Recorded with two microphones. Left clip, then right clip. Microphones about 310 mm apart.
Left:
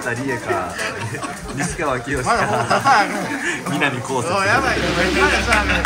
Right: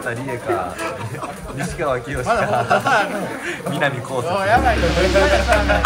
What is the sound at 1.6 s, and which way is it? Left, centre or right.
Speech, centre.